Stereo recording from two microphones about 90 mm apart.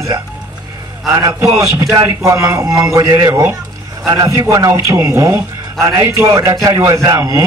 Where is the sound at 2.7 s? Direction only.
40° right (ahead or behind).